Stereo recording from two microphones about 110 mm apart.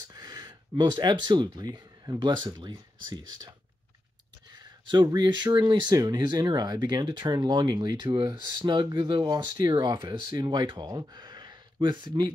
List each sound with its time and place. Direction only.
0.1 s speech: 35° right (ahead or behind)
4.5 s a sound: 40° right (ahead or behind)
5.1 s speech: 40° right (ahead or behind)